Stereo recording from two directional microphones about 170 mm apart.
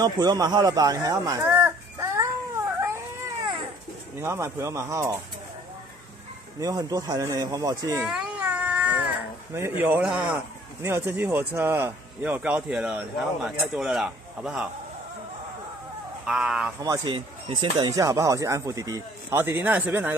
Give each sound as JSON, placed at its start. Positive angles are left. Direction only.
{"t": 0.0, "sound": "a sound", "side_deg": -25}
{"t": 4.2, "sound": "speech", "side_deg": -15}
{"t": 6.6, "sound": "speech", "side_deg": -20}
{"t": 8.0, "sound": "cat", "side_deg": -5}
{"t": 9.5, "sound": "speech", "side_deg": -15}
{"t": 16.3, "sound": "speech", "side_deg": -5}
{"t": 16.8, "sound": "speech", "side_deg": -25}
{"t": 17.9, "sound": "speech", "side_deg": -20}